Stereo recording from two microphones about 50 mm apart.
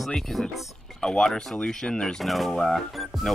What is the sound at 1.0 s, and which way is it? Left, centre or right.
Speech, centre.